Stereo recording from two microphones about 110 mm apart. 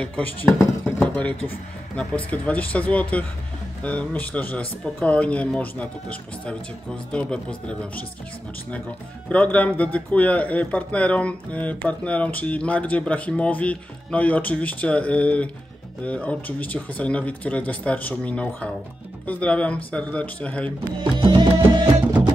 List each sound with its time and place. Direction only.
0.0 s speech: 10° left (ahead or behind)
9.3 s speech: 15° left (ahead or behind)
21.0 s music: 50° right (ahead or behind)